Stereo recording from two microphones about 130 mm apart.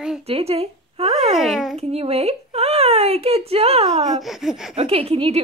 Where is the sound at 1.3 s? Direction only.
Centre (ahead or behind).